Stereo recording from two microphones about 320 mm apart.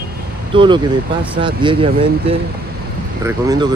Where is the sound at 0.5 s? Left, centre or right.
Centre.